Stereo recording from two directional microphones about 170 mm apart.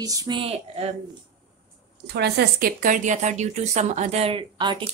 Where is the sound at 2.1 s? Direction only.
80° right.